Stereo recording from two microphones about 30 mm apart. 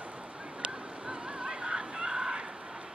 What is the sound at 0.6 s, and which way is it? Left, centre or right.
Fowl, right.